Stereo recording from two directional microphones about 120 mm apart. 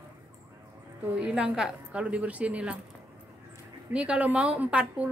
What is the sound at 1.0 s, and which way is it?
A woman's voice, 10° right (ahead or behind).